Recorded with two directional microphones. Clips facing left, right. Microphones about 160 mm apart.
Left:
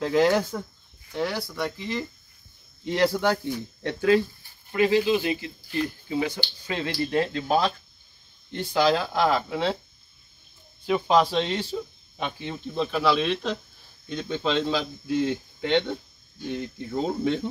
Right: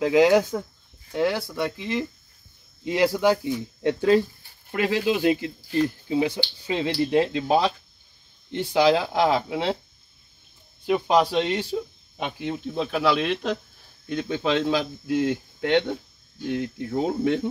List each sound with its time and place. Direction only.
0.0 s speech: 10° right (ahead or behind)
3.8 s speech: 30° right (ahead or behind)
4.6 s speech: 65° right (ahead or behind)
5.2 s speech: 45° right (ahead or behind)
5.8 s speech: 25° right (ahead or behind)
9.1 s speech: 25° right (ahead or behind)
10.9 s speech: 10° right (ahead or behind)